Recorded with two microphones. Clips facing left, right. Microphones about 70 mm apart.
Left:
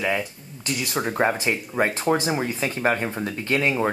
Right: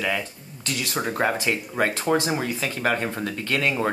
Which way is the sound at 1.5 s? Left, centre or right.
Left.